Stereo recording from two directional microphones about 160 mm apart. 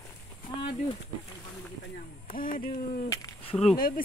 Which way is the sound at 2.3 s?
60° left (ahead or behind).